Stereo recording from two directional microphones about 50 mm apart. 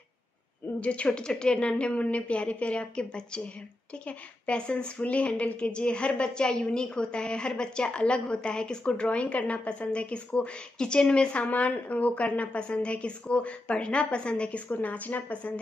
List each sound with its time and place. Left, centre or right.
0.7 s a woman's voice: left
11.4 s a woman's voice: left
14.7 s speech: left